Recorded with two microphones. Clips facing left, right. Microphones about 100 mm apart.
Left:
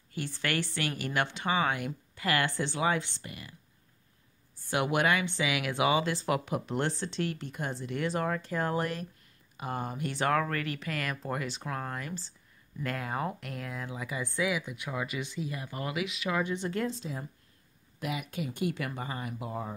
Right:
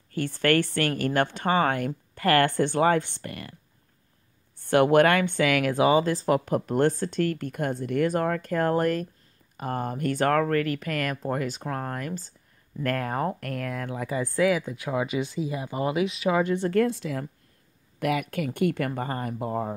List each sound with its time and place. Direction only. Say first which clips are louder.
0.1 s speech: right 10 dB; 50° right (ahead or behind)
4.6 s speech: right 10 dB; 55° right (ahead or behind)
14.3 s speech: right 8 dB; 45° right (ahead or behind)
16.6 s speech: right 9 dB; 60° right (ahead or behind)